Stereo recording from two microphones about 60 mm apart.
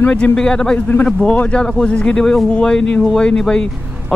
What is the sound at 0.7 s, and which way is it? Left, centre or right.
Speech, left.